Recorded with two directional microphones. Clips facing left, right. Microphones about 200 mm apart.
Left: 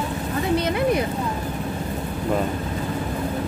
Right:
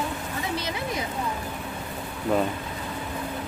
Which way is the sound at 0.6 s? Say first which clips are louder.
Left 9 dB; 55° left (ahead or behind).